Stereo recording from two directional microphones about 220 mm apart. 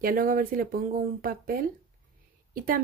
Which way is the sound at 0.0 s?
40° right (ahead or behind).